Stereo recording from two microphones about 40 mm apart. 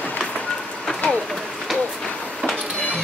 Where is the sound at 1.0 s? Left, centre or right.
Left.